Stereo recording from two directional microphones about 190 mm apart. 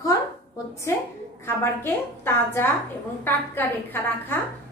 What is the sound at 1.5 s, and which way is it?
A woman's voice, 15° left (ahead or behind).